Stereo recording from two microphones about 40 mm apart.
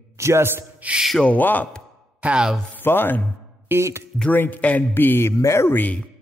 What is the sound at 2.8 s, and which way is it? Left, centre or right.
Speech, left.